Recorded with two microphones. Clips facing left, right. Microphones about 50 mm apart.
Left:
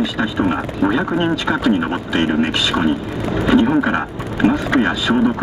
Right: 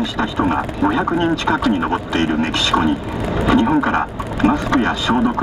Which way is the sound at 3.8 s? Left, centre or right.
Centre.